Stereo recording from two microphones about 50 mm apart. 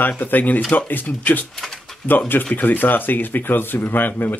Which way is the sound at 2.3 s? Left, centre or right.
Left.